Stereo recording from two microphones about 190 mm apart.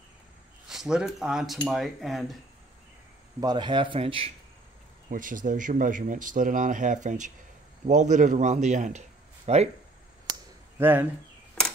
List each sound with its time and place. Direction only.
0.7 s speech: centre (ahead or behind)
3.3 s a man's voice: 20° right (ahead or behind)
5.1 s a man's voice: 45° right (ahead or behind)
10.8 s speech: 10° right (ahead or behind)